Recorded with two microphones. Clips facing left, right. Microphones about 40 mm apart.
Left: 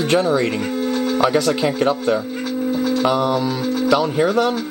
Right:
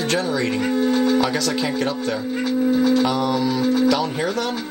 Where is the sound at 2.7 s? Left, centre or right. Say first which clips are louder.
Right 3 dB; centre.